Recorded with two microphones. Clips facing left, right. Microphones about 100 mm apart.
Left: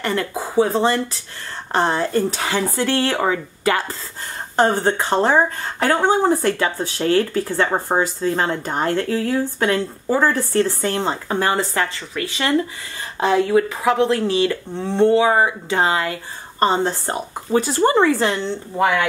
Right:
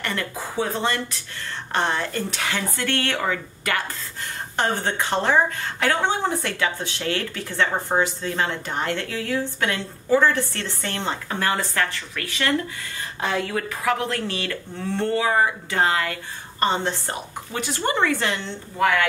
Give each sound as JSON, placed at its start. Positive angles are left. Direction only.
{"t": 0.0, "sound": "speech", "side_deg": 30}
{"t": 16.5, "sound": "speech", "side_deg": 35}
{"t": 18.8, "sound": "speech", "side_deg": 20}